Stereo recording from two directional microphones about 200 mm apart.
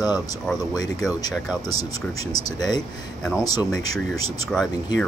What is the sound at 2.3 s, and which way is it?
Speech, 20° left (ahead or behind).